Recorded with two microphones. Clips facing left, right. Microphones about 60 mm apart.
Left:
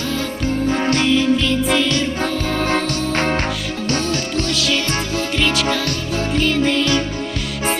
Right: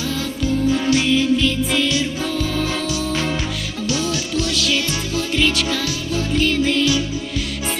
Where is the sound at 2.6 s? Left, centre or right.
Left.